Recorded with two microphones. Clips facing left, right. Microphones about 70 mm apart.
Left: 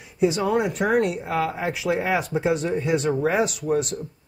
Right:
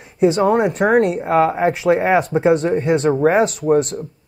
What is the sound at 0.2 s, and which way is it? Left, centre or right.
Speech, right.